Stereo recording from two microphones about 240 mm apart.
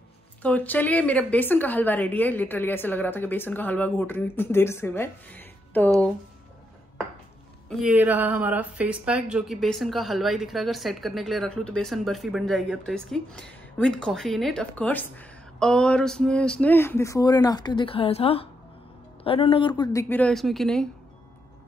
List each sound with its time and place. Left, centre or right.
0.4 s a woman's voice: centre
7.8 s a woman's voice: centre